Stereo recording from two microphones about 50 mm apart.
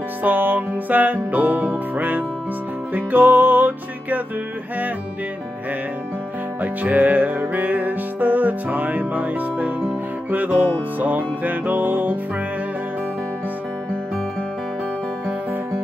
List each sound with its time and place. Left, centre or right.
0.2 s music: right
6.6 s music: right